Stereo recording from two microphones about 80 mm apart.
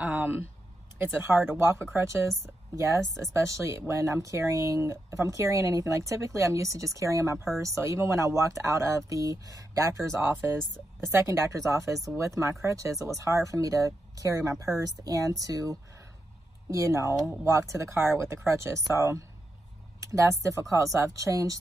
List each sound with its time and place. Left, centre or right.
0.0 s speech: right